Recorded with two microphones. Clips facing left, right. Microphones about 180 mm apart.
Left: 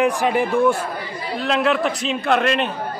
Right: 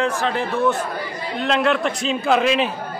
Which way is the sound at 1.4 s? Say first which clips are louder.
Even; centre (ahead or behind).